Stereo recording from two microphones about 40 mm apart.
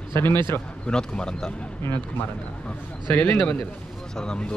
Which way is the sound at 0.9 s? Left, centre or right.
Centre.